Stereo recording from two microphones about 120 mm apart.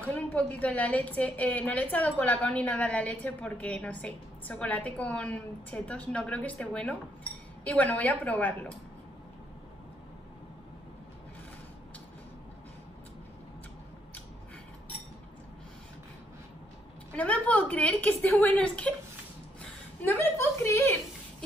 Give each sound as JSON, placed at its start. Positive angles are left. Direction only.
{"t": 0.0, "sound": "a woman's voice", "side_deg": 10}
{"t": 17.1, "sound": "a woman's voice", "side_deg": 10}